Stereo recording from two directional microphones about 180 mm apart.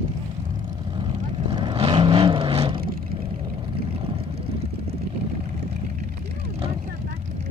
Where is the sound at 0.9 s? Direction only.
30° right (ahead or behind).